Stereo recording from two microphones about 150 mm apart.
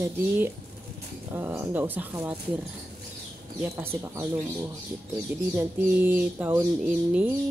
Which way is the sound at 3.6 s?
15° right (ahead or behind).